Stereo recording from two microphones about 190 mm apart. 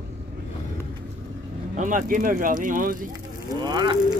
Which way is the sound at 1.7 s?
45° right (ahead or behind).